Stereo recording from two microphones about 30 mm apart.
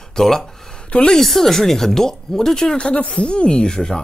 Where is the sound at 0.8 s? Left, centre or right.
Left.